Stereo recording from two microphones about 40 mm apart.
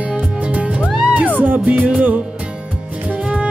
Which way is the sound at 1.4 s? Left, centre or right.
Right.